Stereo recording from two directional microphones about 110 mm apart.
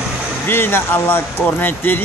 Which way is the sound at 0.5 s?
20° left (ahead or behind).